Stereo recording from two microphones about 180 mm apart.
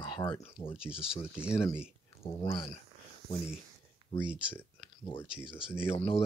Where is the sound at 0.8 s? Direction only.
5° right (ahead or behind).